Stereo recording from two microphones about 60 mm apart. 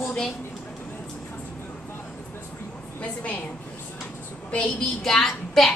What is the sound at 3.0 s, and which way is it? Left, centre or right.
Speech, left.